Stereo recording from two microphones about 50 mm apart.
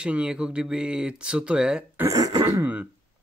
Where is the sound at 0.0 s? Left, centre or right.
Right.